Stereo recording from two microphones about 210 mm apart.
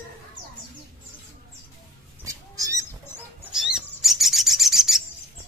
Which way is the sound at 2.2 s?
15° right (ahead or behind).